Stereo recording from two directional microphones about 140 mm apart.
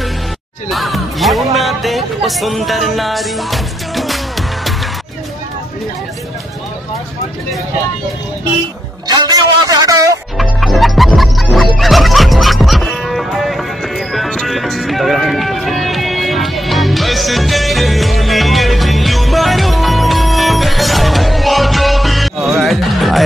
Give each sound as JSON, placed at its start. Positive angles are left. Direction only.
{"t": 0.7, "sound": "speech", "side_deg": 0}
{"t": 9.0, "sound": "a sound", "side_deg": -25}
{"t": 10.3, "sound": "music", "side_deg": 0}